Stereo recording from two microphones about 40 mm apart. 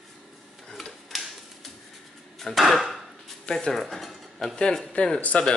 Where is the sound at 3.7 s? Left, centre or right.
Centre.